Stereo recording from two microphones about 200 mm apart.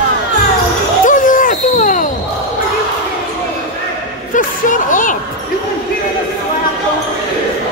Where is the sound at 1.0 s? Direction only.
40° left (ahead or behind).